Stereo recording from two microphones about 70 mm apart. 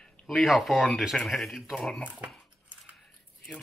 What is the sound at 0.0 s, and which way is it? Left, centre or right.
Speech, centre.